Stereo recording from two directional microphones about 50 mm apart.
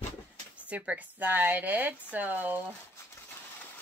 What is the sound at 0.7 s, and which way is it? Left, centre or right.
Speech, right.